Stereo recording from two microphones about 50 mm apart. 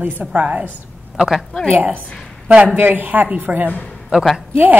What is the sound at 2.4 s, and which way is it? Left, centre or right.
Speech, right.